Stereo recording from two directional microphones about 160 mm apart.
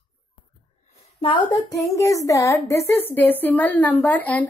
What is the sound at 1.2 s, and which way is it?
A woman's voice, 30° left (ahead or behind).